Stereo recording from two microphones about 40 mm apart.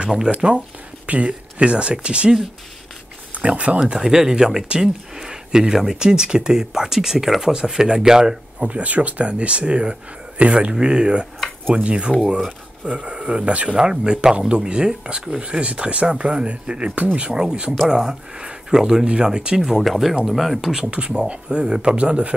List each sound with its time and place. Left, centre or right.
0.0 s speech: centre
3.3 s speech: right
3.8 s speech: centre
8.6 s speech: right; by 19.6 s centre
19.6 s speech: centre
20.9 s speech: right